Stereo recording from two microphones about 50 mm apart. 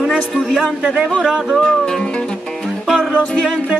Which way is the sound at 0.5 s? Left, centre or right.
Centre.